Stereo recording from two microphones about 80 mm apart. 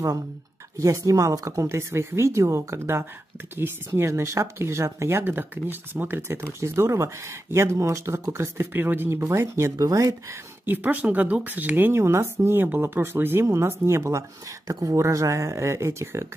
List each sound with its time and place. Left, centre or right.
0.7 s speech: right
10.6 s speech: right